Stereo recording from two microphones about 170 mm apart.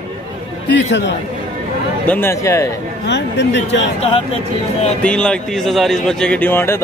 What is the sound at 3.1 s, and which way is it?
Speech, 90° left.